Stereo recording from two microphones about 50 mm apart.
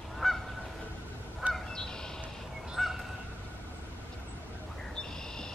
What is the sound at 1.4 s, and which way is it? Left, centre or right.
Goose, right.